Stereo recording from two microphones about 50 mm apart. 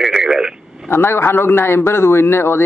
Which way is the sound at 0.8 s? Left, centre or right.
Left.